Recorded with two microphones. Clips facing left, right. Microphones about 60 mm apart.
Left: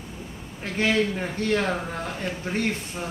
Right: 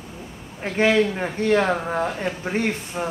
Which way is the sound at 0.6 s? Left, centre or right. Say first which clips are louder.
Right 5 dB; right.